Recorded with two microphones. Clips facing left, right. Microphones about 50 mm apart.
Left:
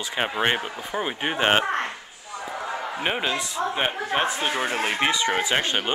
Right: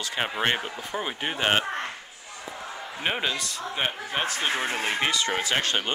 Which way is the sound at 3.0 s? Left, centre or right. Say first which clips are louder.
Left 1 dB; centre.